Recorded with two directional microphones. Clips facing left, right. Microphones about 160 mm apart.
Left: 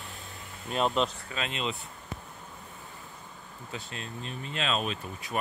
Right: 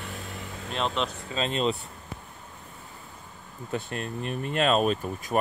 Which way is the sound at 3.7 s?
55° right (ahead or behind).